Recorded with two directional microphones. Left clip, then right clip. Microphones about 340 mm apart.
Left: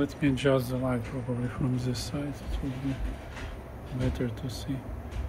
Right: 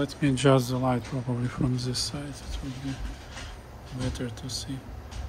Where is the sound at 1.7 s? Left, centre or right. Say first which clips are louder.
Right 3 dB; centre.